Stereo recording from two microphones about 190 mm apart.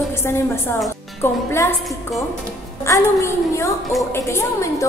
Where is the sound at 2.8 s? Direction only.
15° left (ahead or behind).